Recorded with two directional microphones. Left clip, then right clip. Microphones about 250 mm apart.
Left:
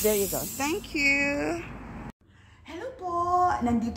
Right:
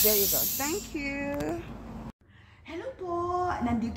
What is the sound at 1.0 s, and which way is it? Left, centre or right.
Speech, centre.